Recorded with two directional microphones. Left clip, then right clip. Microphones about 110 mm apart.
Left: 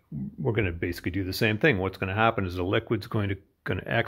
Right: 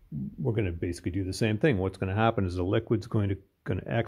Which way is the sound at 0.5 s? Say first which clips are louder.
Left 3 dB; 25° right (ahead or behind).